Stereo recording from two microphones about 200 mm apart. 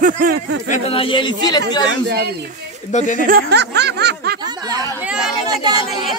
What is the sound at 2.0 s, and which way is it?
Speech, 55° right (ahead or behind).